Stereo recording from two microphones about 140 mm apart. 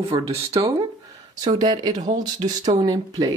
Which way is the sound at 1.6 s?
30° right (ahead or behind).